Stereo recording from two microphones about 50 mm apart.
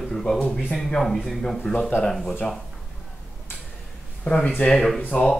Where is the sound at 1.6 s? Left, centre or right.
Left.